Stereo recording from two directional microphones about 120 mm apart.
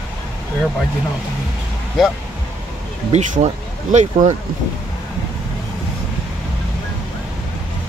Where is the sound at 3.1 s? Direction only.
75° right (ahead or behind).